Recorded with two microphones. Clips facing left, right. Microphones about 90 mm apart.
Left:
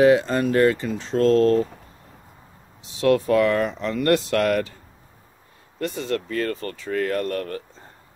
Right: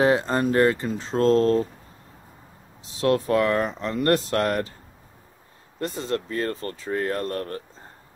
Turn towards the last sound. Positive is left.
turn(degrees=-30)  # may be behind; listen again after turning